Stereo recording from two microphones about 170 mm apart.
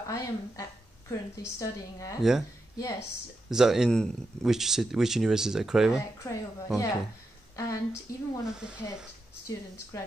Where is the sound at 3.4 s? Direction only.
Centre (ahead or behind).